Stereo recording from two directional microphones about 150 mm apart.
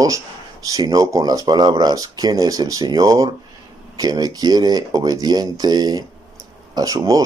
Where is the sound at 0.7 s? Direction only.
25° right (ahead or behind).